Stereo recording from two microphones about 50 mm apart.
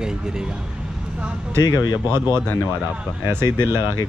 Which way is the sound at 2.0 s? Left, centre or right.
Right.